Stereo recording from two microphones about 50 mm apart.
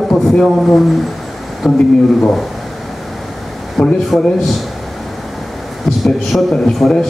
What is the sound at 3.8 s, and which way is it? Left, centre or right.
Speech, centre.